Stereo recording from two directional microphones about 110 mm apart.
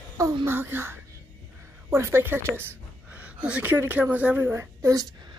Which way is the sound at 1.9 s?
25° right (ahead or behind).